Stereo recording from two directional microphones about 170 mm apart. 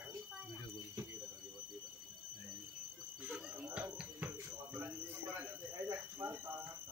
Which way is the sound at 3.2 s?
10° right (ahead or behind).